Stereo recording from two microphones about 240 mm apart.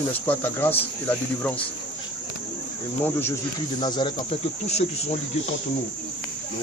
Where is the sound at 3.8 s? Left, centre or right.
Centre.